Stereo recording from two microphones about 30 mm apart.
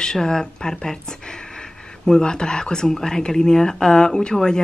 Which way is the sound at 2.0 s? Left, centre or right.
Left.